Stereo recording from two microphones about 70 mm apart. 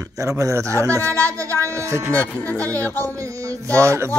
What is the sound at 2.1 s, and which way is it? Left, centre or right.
Speech, centre.